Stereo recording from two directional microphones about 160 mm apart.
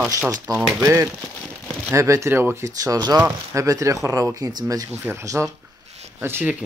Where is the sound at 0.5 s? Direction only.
5° right (ahead or behind).